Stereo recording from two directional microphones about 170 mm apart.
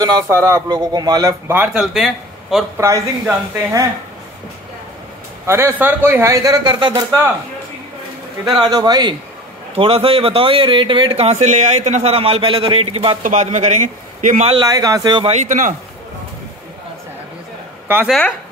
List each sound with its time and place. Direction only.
0.0 s speech: 20° right (ahead or behind)
1.5 s speech: 10° right (ahead or behind)
1.8 s a man's voice: centre (ahead or behind)
2.8 s speech: 15° right (ahead or behind)
5.5 s speech: 15° right (ahead or behind)
8.5 s speech: 25° right (ahead or behind)
9.8 s speech: 35° right (ahead or behind)
13.2 s a man's voice: 45° right (ahead or behind)
14.5 s speech: 20° right (ahead or behind)
15.3 s a man's voice: 45° right (ahead or behind)
17.8 s speech: 10° right (ahead or behind)